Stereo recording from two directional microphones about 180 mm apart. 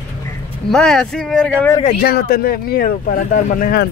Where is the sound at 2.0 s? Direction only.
60° left (ahead or behind).